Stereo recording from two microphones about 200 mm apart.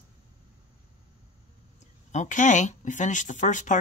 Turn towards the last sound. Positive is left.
turn(degrees=40)  # may be behind; listen again after turning